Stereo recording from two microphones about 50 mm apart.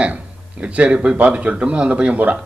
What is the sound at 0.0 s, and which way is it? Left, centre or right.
Speech, right.